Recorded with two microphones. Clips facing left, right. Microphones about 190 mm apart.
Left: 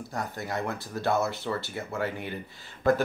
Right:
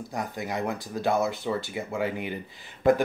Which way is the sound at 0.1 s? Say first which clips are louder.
Right 1 dB; 15° right (ahead or behind).